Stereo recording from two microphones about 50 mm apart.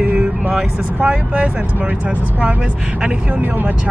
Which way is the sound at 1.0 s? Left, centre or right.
Right.